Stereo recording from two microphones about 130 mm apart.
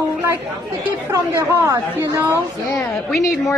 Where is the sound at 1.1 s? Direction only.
25° right (ahead or behind).